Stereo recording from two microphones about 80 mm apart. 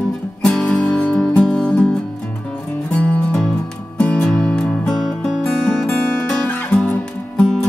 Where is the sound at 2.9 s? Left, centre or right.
Centre.